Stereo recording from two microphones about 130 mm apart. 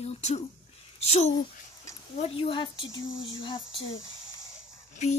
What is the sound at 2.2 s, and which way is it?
Speech, 45° left (ahead or behind).